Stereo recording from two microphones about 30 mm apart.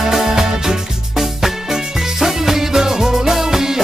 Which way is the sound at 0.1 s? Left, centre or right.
Centre.